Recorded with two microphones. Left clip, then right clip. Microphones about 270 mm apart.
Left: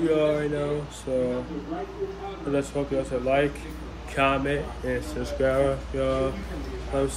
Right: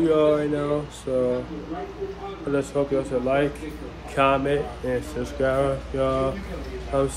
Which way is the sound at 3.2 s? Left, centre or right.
Centre.